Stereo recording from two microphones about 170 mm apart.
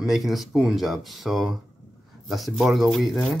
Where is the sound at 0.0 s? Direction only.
Centre (ahead or behind).